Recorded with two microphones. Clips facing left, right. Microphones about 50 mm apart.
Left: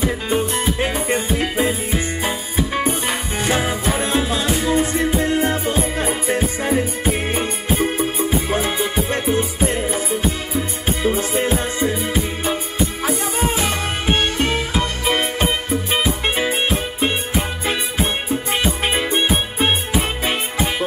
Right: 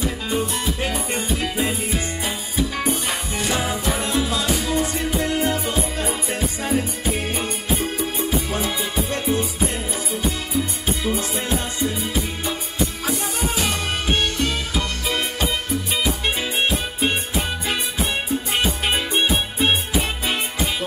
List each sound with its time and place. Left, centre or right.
0.0 s music: left
11.1 s music: left
17.6 s music: left